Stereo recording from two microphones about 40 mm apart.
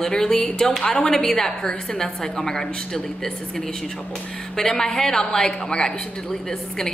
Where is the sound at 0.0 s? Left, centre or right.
Centre.